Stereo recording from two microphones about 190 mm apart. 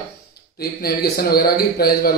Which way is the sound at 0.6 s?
55° left (ahead or behind).